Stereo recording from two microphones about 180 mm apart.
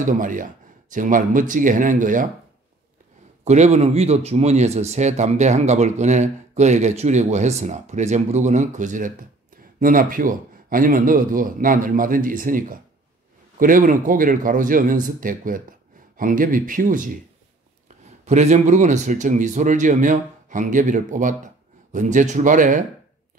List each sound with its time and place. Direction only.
0.0 s speech: 45° right (ahead or behind)
3.4 s speech: 40° right (ahead or behind)
18.2 s speech: 40° right (ahead or behind)